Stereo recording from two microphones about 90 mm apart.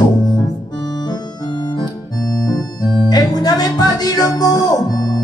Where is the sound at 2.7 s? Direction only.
45° left (ahead or behind).